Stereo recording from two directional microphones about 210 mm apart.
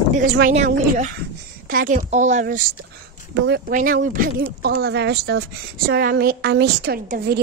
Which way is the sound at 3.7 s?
40° right (ahead or behind).